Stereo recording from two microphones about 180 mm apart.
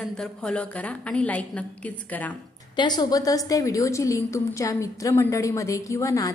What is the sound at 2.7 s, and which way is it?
A woman's voice, 25° left (ahead or behind).